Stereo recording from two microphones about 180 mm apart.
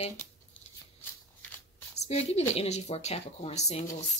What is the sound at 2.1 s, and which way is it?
Speech, 35° left (ahead or behind).